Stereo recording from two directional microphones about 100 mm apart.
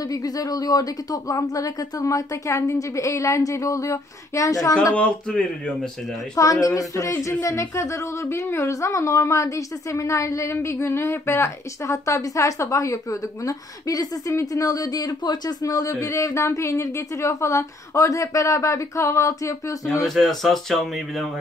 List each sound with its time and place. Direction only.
0.1 s speech: 40° left (ahead or behind)
4.9 s speech: 5° left (ahead or behind)
6.3 s speech: 35° left (ahead or behind)
20.2 s speech: centre (ahead or behind)